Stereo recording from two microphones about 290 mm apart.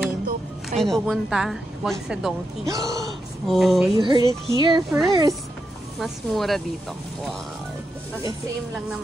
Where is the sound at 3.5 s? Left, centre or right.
Centre.